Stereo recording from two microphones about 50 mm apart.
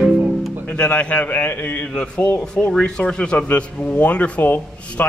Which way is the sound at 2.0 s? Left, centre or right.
Left.